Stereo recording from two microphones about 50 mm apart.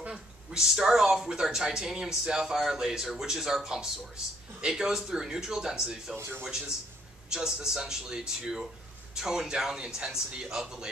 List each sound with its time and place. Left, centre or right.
0.1 s speech: centre
6.1 s speech: right
7.3 s speech: centre